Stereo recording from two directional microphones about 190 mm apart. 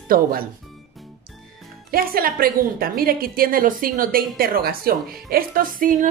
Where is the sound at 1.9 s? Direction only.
50° right (ahead or behind).